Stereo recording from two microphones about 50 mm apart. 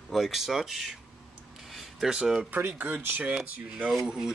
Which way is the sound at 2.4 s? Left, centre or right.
Right.